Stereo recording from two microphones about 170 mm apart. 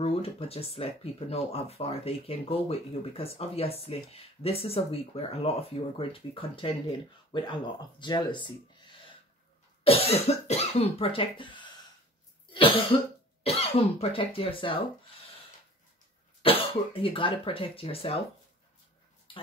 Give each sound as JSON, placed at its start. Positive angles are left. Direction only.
{"t": 0.0, "sound": "speech", "side_deg": 35}
{"t": 9.8, "sound": "cough", "side_deg": 35}
{"t": 10.2, "sound": "speech", "side_deg": 40}
{"t": 12.5, "sound": "cough", "side_deg": 30}
{"t": 13.4, "sound": "speech", "side_deg": 35}
{"t": 16.4, "sound": "speech", "side_deg": 30}